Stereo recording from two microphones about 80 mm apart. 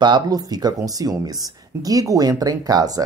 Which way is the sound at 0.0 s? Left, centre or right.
Right.